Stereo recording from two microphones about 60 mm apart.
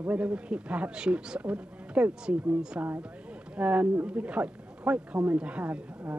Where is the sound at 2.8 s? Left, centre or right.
Right.